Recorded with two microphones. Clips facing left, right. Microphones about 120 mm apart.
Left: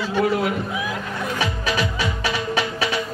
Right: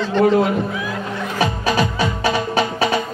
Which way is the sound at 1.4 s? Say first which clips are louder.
Right 7 dB; 40° right (ahead or behind).